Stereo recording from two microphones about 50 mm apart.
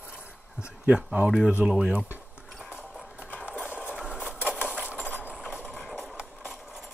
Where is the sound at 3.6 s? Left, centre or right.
Right.